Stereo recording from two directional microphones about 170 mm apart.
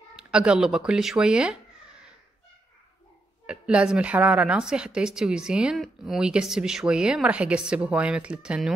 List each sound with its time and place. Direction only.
0.1 s a woman's voice: 5° right (ahead or behind)
3.4 s a woman's voice: 5° right (ahead or behind)